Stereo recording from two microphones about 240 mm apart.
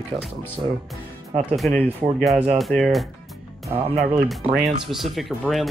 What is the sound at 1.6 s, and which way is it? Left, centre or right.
Speech, centre.